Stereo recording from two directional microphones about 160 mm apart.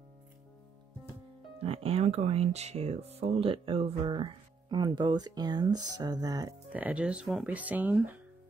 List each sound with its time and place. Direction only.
1.6 s speech: 35° right (ahead or behind)
6.7 s speech: 10° right (ahead or behind)